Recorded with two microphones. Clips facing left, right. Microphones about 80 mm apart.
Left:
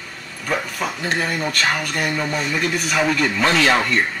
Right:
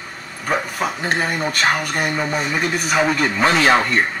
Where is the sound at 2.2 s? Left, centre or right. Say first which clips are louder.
Right 1 dB; centre.